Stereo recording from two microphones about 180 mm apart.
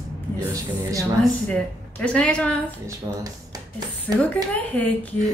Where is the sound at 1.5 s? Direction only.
5° left (ahead or behind).